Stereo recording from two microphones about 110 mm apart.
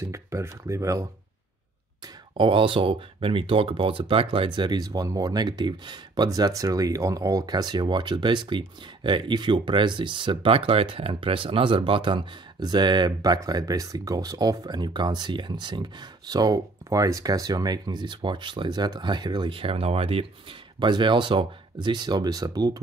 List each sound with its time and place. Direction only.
0.0 s speech: 25° right (ahead or behind)
2.3 s speech: 50° right (ahead or behind)
20.8 s speech: 50° right (ahead or behind)